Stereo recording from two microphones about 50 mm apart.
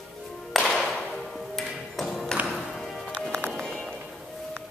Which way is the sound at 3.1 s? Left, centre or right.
Centre.